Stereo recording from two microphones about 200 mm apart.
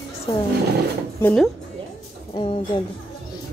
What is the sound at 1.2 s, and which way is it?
Speech, 5° left (ahead or behind).